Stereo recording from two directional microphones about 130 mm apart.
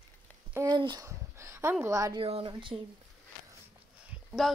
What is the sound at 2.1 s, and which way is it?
Speech, 50° right (ahead or behind).